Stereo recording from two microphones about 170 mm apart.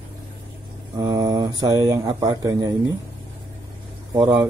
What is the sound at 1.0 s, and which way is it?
Speech, 20° right (ahead or behind).